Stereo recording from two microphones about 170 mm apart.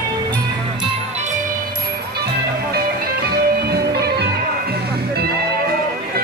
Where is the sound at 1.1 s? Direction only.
45° right (ahead or behind).